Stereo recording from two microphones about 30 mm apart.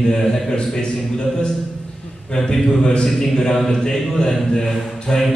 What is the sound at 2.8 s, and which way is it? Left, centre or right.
Mantra, left.